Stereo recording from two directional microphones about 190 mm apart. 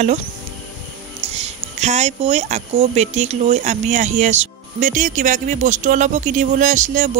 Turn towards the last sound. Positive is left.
turn(degrees=-40)  # may be behind; listen again after turning